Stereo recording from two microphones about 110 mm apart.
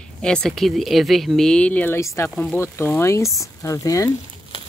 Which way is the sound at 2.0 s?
25° left (ahead or behind).